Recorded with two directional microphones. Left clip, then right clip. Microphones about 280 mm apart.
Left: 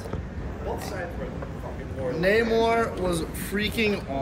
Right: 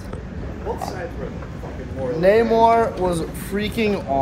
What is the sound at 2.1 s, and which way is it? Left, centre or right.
Speech, centre.